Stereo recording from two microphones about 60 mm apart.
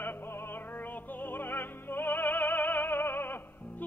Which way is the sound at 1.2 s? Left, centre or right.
Left.